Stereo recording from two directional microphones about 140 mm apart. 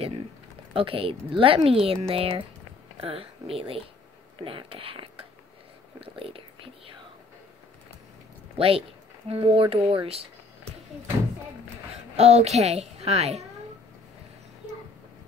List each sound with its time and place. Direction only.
0.7 s speech: 40° right (ahead or behind)
8.5 s a woman's voice: 45° right (ahead or behind)
12.2 s a woman's voice: 50° right (ahead or behind)